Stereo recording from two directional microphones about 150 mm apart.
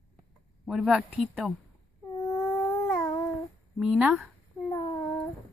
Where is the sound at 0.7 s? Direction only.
5° right (ahead or behind).